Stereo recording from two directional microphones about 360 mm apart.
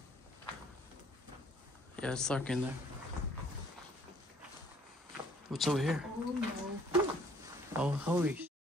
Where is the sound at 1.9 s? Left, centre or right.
Centre.